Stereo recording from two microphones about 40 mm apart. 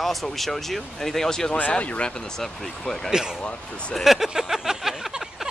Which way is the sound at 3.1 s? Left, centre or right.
Centre.